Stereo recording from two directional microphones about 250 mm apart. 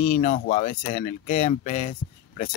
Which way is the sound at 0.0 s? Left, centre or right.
Left.